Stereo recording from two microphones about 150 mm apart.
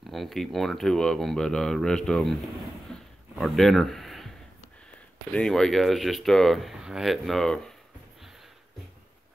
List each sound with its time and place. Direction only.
0.1 s speech: centre (ahead or behind)
2.9 s a sound: centre (ahead or behind)
5.3 s speech: 5° left (ahead or behind)